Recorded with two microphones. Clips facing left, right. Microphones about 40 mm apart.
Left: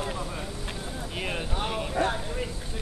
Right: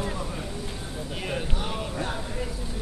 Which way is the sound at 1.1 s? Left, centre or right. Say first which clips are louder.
Even; centre.